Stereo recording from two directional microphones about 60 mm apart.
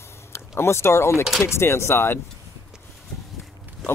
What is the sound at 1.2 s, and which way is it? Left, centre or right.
Speech, centre.